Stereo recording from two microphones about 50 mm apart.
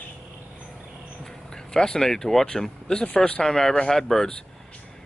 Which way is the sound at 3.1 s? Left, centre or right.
Left.